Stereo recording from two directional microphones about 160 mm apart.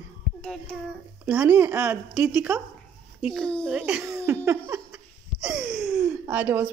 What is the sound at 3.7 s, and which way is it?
Speech, 5° right (ahead or behind).